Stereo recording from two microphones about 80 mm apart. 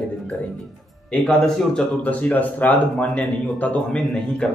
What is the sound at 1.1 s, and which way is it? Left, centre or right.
Speech, centre.